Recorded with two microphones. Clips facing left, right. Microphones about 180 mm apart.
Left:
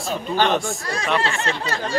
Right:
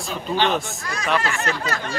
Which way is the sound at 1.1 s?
30° left (ahead or behind).